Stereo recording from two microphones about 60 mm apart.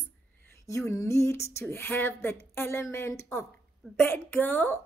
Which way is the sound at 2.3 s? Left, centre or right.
Left.